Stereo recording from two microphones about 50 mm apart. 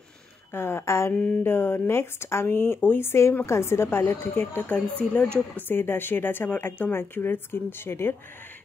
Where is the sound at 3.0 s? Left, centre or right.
Left.